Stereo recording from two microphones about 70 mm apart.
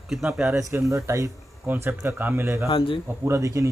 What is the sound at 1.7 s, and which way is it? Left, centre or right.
Speech, right.